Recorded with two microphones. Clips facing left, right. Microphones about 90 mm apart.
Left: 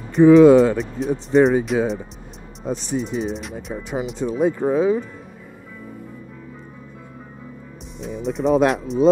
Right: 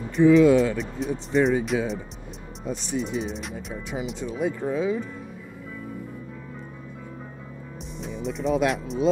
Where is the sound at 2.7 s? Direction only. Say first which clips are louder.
Left 5 dB; 45° left (ahead or behind).